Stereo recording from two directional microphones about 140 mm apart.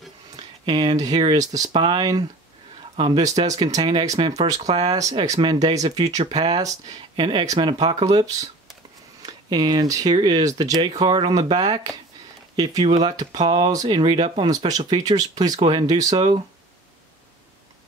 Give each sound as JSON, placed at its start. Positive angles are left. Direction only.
{"t": 0.4, "sound": "speech", "side_deg": -40}
{"t": 4.6, "sound": "speech", "side_deg": -50}
{"t": 4.8, "sound": "speech", "side_deg": -25}
{"t": 7.8, "sound": "speech", "side_deg": -50}
{"t": 9.2, "sound": "speech", "side_deg": -30}